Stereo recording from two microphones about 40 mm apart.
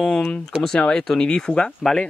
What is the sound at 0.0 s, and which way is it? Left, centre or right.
Speech, left.